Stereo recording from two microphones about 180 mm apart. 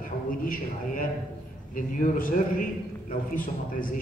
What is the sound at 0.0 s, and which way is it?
A man's voice, 50° left (ahead or behind).